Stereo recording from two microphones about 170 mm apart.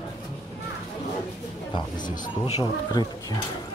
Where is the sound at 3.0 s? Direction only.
25° left (ahead or behind).